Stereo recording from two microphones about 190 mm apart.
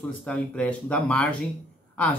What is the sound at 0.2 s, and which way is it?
Speech, 5° left (ahead or behind).